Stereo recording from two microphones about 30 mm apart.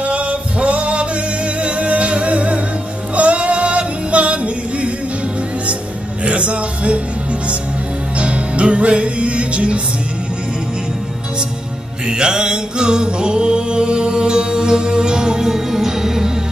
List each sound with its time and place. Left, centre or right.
0.0 s music: right
6.2 s music: right
8.2 s music: right
12.1 s music: right
15.4 s music: centre